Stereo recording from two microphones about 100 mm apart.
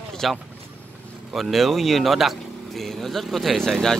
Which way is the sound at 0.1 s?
5° left (ahead or behind).